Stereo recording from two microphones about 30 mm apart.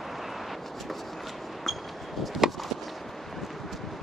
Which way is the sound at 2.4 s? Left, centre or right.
Centre.